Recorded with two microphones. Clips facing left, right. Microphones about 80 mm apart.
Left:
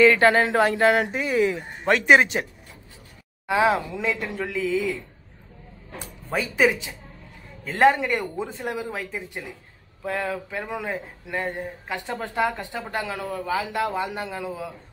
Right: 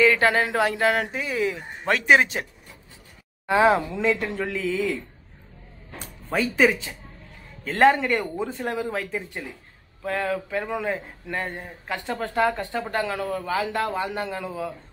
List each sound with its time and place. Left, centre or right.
0.0 s speech: centre
3.4 s a woman's voice: centre
6.3 s speech: centre